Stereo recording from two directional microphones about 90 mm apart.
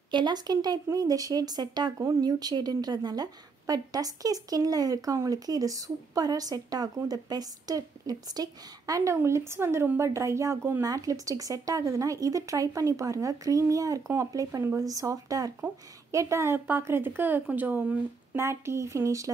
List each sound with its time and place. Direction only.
0.1 s a woman's voice: 55° right (ahead or behind); by 19.3 s 35° right (ahead or behind)